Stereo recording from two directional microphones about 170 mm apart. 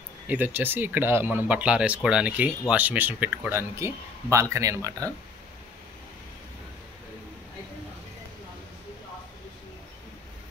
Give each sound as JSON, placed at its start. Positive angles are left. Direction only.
{"t": 0.3, "sound": "speech", "side_deg": -10}